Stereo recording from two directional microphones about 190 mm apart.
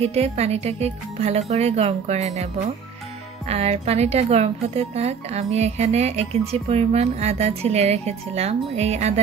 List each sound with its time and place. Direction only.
0.0 s speech: 35° right (ahead or behind)
3.4 s speech: 35° right (ahead or behind)